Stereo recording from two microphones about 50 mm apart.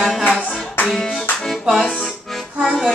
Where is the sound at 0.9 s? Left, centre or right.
Centre.